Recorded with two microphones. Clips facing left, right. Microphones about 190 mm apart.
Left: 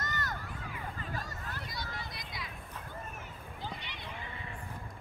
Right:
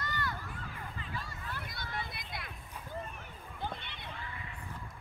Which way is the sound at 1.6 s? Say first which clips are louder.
Even; 55° right (ahead or behind).